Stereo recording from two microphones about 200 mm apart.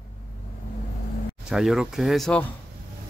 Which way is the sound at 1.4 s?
Centre (ahead or behind).